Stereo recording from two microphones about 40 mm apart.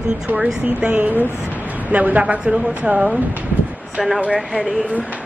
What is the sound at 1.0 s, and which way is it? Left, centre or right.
Speech, right.